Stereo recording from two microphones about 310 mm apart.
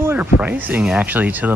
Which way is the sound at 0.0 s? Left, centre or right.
Centre.